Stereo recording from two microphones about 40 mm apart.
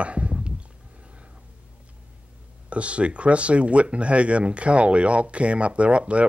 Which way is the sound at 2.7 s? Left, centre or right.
Right.